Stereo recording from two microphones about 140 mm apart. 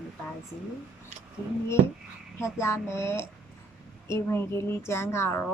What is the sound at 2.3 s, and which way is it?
A woman's voice, 20° left (ahead or behind).